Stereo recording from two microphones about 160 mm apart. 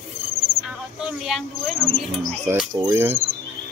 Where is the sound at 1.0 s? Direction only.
Centre (ahead or behind).